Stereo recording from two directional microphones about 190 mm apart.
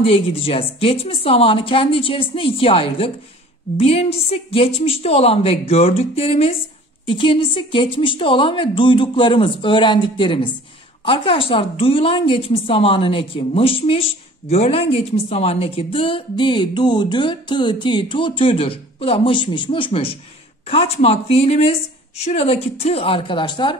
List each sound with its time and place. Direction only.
0.0 s a woman's voice: 30° left (ahead or behind)